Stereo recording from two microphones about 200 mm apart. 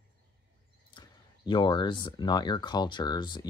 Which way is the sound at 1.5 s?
25° left (ahead or behind).